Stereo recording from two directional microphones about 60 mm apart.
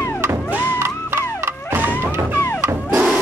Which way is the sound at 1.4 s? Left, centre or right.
Right.